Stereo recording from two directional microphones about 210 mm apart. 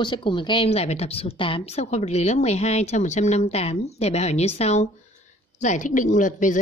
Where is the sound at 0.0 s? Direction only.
20° left (ahead or behind).